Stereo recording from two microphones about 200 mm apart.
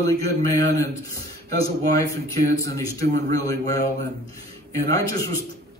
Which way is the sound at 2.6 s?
15° left (ahead or behind).